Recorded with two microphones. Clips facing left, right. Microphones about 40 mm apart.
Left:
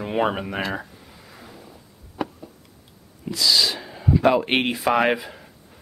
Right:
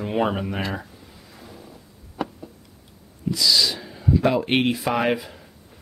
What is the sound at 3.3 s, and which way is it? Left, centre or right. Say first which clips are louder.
Speech: even; centre.